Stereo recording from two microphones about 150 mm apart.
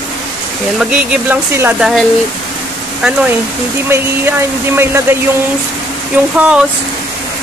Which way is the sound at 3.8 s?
15° right (ahead or behind).